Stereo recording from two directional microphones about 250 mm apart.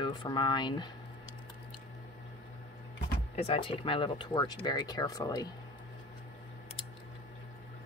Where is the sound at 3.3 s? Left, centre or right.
Left.